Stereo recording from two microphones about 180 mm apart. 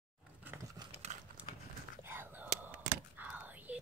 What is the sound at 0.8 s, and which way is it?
Clip-clop, 20° right (ahead or behind).